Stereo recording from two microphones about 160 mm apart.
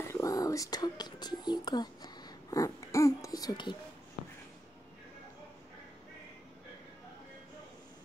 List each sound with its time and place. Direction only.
0.0 s speech: 20° left (ahead or behind)